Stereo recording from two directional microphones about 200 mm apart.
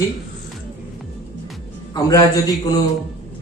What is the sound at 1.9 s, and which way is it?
Speech, 20° left (ahead or behind).